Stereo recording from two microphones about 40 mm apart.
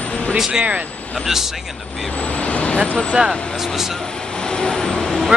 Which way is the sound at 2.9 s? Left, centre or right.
Left.